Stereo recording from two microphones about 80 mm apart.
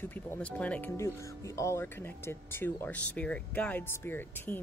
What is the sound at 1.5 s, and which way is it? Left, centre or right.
Speech, left.